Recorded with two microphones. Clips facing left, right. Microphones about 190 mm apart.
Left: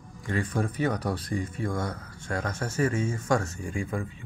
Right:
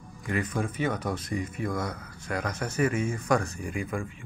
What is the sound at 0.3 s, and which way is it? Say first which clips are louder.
Speech: left 1 dB; 30° left (ahead or behind).